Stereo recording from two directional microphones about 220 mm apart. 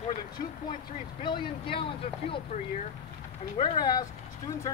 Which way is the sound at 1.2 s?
25° left (ahead or behind).